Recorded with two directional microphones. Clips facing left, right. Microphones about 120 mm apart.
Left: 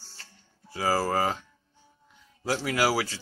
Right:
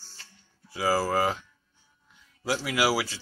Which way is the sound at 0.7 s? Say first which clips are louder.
Right 1 dB; 45° left (ahead or behind).